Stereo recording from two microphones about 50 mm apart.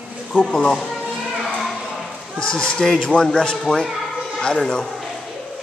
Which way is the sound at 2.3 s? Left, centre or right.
Centre.